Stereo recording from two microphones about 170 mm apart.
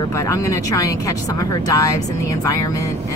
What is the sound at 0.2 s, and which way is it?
Speech, 15° left (ahead or behind).